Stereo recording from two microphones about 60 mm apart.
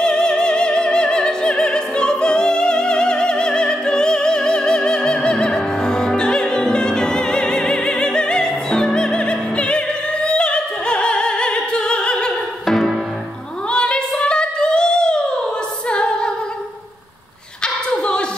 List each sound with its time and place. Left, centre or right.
0.0 s music: centre
12.6 s music: centre
13.7 s female singing: centre
15.9 s music: centre